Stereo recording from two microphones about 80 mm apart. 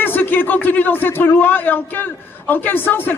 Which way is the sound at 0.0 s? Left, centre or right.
Left.